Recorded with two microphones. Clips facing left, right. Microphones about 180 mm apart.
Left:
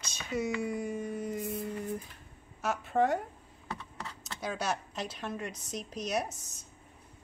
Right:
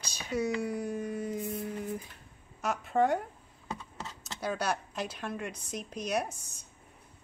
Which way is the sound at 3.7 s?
20° right (ahead or behind).